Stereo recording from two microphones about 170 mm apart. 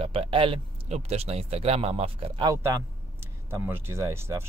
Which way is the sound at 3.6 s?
15° right (ahead or behind).